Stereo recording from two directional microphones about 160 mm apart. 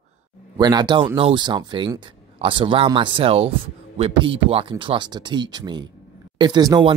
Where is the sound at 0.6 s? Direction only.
25° right (ahead or behind).